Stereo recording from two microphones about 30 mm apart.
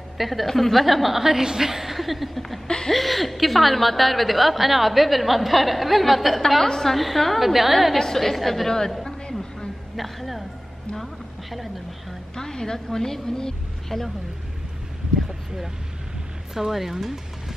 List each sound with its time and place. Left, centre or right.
0.2 s a woman's voice: centre
1.2 s a woman's voice: centre
6.6 s a woman's voice: centre
7.0 s a woman's voice: centre
8.0 s a woman's voice: centre
9.9 s speech: centre
11.5 s a sound: centre
12.4 s a woman's voice: left
15.2 s speech: centre